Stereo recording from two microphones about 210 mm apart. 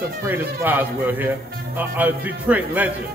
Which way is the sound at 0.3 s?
10° right (ahead or behind).